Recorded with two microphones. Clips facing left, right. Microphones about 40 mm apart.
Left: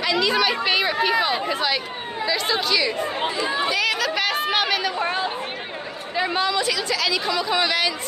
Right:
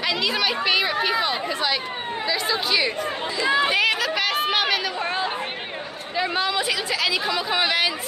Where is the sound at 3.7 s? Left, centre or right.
Right.